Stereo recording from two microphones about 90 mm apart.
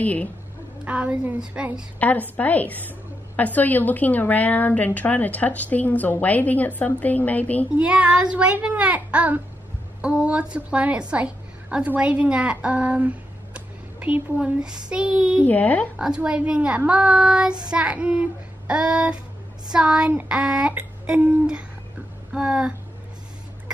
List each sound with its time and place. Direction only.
0.0 s a woman's voice: 15° left (ahead or behind)
0.8 s speech: 15° right (ahead or behind)
2.0 s a woman's voice: 20° left (ahead or behind)
7.7 s a woman's voice: 15° right (ahead or behind)
15.4 s a woman's voice: 15° left (ahead or behind)
16.0 s speech: 10° right (ahead or behind)